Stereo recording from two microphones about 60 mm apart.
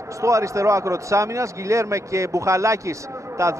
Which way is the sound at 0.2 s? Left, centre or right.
Right.